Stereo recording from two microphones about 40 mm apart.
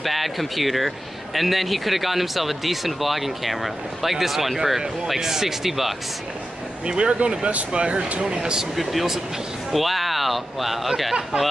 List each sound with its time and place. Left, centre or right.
0.0 s speech: centre
6.9 s speech: right
7.2 s speech: right
8.7 s speech: centre